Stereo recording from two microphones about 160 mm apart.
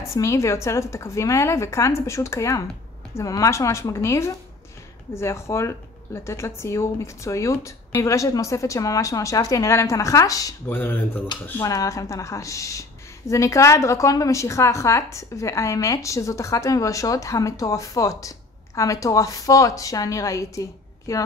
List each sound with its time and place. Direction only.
0.1 s speech: 20° left (ahead or behind)
11.6 s speech: 20° left (ahead or behind)